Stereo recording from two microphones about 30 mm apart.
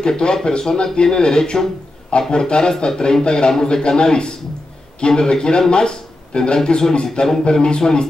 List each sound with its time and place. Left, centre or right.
0.0 s a man's voice: left